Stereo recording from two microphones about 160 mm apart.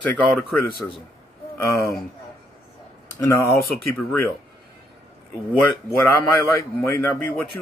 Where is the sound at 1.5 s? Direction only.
20° left (ahead or behind).